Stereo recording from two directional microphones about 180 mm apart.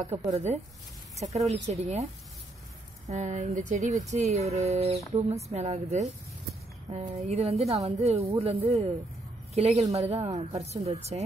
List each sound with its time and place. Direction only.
1.3 s speech: 35° right (ahead or behind)
3.1 s a woman's voice: 40° right (ahead or behind)